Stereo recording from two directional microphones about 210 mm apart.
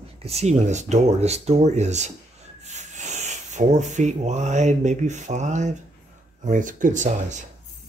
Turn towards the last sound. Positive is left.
turn(degrees=-35)  # may be behind; listen again after turning